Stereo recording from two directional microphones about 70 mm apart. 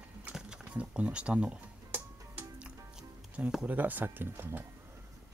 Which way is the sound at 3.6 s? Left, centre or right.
Right.